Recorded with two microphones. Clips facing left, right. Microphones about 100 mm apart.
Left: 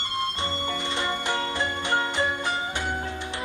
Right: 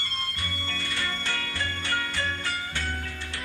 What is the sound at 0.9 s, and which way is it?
Music, 20° left (ahead or behind).